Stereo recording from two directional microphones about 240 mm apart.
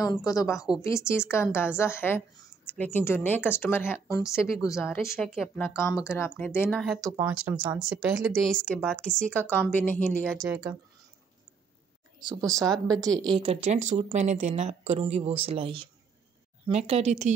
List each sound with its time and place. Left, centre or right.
0.0 s a woman's voice: centre
4.6 s speech: centre
5.6 s a woman's voice: centre
10.4 s speech: centre
12.2 s speech: centre
13.4 s speech: right